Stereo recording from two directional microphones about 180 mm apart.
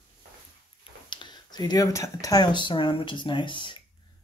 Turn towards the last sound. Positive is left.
turn(degrees=25)  # may be behind; listen again after turning